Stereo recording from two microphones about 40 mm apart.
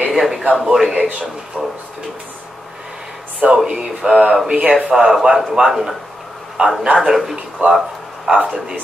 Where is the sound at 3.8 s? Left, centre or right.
Centre.